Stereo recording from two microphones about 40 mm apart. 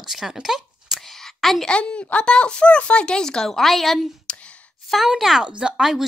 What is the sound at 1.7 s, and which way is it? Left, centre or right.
Speech, left.